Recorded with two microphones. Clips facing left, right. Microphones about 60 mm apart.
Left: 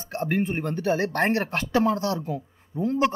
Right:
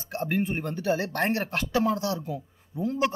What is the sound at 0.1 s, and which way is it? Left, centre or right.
Speech, left.